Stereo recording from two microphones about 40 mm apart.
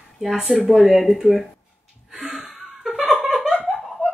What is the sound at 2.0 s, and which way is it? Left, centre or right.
Laughter, centre.